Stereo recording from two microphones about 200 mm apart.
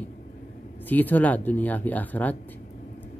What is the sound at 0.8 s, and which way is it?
Speech, 10° left (ahead or behind).